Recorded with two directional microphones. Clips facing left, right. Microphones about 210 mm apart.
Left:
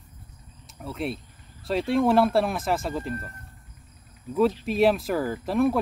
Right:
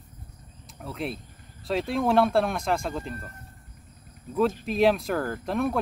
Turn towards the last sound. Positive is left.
turn(degrees=0)  # may be behind; listen again after turning